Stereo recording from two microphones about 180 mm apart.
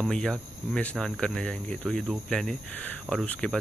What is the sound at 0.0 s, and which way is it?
Speech, 5° left (ahead or behind).